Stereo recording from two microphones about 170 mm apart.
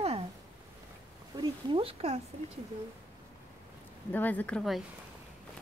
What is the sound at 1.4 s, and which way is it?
Speech, 30° right (ahead or behind).